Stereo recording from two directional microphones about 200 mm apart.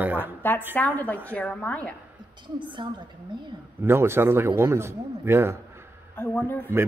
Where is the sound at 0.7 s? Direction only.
10° left (ahead or behind).